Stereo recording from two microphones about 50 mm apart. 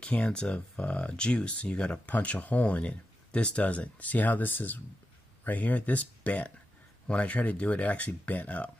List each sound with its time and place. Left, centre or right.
0.0 s speech: left